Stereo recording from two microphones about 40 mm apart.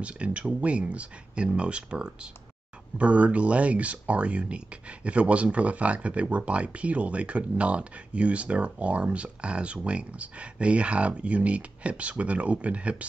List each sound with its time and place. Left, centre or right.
0.0 s speech: right
3.0 s speech: right